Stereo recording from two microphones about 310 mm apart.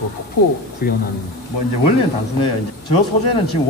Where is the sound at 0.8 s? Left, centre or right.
Left.